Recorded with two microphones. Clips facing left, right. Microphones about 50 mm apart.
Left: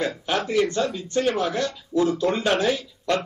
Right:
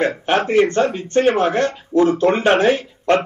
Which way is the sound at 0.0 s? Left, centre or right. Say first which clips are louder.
Right 7 dB; right.